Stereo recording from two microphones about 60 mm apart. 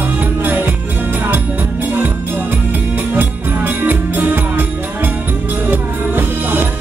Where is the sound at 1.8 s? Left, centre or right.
Right.